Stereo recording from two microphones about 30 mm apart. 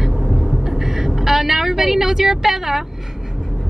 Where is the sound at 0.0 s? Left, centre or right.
Centre.